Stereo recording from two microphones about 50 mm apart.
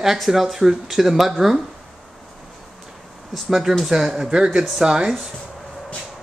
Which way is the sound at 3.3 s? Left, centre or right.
Centre.